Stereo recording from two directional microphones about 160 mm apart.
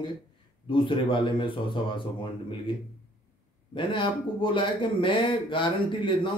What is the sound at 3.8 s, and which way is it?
Speech, 30° left (ahead or behind).